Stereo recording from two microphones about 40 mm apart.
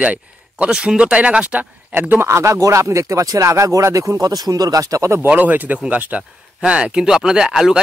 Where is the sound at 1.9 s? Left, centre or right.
Right.